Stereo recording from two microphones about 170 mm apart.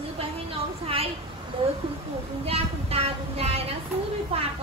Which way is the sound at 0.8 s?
35° right (ahead or behind).